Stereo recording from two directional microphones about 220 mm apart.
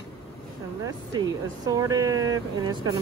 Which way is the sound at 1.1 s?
15° right (ahead or behind).